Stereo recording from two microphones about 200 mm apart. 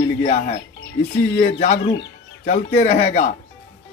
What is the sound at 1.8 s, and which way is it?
Speech, 60° left (ahead or behind).